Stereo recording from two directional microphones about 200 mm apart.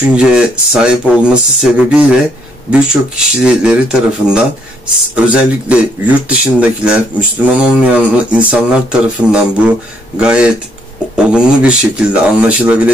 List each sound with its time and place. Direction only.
0.1 s speech: 5° right (ahead or behind)